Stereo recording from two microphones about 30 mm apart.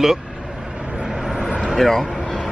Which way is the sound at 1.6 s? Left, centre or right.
Centre.